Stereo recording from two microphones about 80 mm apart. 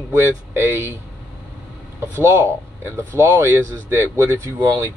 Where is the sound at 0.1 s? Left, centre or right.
Right.